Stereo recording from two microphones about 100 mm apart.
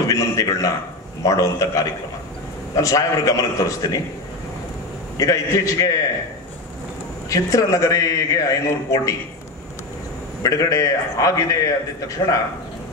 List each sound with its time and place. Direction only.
0.1 s a sound: 30° left (ahead or behind)
1.2 s a man's voice: 35° left (ahead or behind)
5.1 s a man's voice: 35° left (ahead or behind)
7.2 s a man's voice: 35° left (ahead or behind)
10.4 s a man's voice: 35° left (ahead or behind)